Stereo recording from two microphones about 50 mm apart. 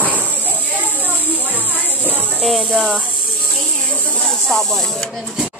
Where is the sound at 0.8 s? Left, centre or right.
Right.